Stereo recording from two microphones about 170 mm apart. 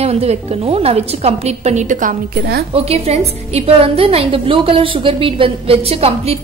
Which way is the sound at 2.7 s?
35° right (ahead or behind).